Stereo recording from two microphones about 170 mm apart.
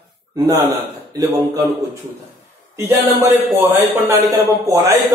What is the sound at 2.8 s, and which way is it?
A man's voice, 15° right (ahead or behind).